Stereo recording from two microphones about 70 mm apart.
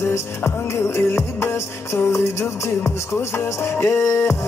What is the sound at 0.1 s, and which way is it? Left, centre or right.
Music, left.